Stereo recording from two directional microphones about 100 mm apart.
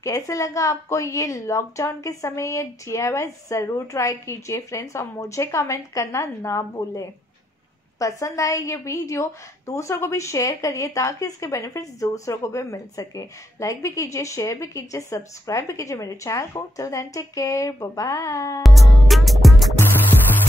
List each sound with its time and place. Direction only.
0.0 s a woman's voice: 30° left (ahead or behind)
19.0 s music: centre (ahead or behind)